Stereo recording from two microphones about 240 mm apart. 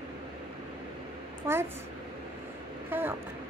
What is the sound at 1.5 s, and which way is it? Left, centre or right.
Speech, centre.